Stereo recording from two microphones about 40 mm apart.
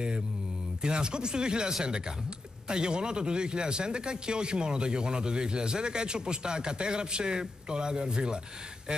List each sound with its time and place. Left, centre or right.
0.8 s speech: right